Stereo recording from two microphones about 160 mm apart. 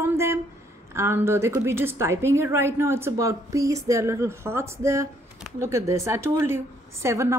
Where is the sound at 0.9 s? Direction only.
15° right (ahead or behind).